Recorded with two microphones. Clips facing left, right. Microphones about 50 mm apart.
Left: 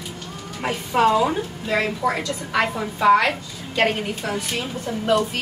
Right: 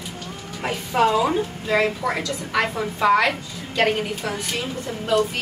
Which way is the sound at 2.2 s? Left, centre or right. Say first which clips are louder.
Left 1 dB; centre.